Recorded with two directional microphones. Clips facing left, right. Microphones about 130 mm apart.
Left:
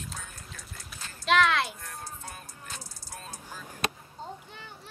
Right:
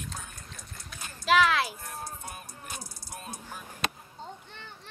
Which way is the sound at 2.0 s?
15° right (ahead or behind).